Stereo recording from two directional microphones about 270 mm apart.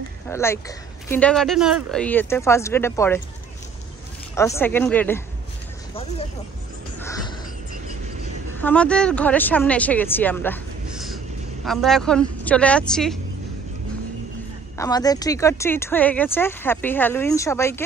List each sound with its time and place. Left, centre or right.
0.3 s speech: centre
4.4 s speech: centre
7.0 s a sound: centre
8.5 s speech: centre
14.8 s speech: centre